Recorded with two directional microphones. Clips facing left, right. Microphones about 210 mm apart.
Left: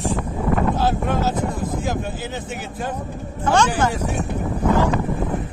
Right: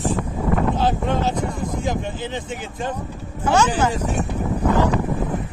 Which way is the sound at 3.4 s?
10° right (ahead or behind).